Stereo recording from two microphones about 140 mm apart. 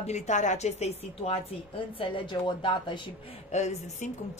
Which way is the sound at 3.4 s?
55° left (ahead or behind).